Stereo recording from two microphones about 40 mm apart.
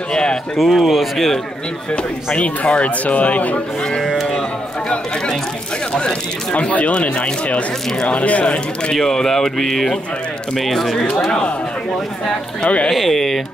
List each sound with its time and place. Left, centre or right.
0.1 s speech: centre
0.6 s a man's voice: centre
2.3 s speech: left
6.5 s speech: left
8.9 s speech: centre
12.6 s speech: left
12.9 s a man's voice: centre